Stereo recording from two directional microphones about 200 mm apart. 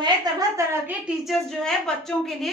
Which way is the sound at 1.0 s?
Centre (ahead or behind).